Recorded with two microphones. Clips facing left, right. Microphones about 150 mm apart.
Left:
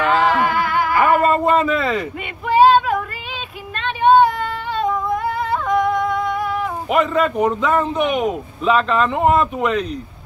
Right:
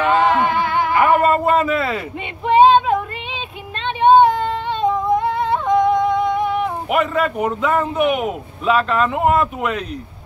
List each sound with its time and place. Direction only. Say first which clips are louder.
0.0 s music: right 1 dB; 25° right (ahead or behind)
1.2 s a sound: even; 5° right (ahead or behind)
2.4 s female singing: right 1 dB; 25° right (ahead or behind)
6.9 s a man's voice: left 3 dB; 5° right (ahead or behind)